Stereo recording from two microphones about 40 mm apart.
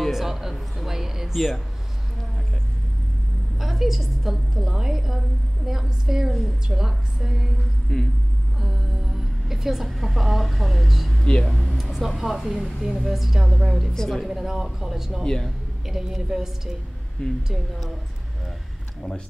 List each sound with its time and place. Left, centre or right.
0.1 s speech: centre
3.5 s a woman's voice: centre
7.9 s a woman's voice: centre
8.5 s a woman's voice: centre
11.1 s speech: centre
11.4 s a woman's voice: centre
11.8 s a woman's voice: centre
13.9 s a woman's voice: centre
14.2 s a woman's voice: centre
15.2 s a woman's voice: centre
15.9 s a woman's voice: centre
17.2 s speech: left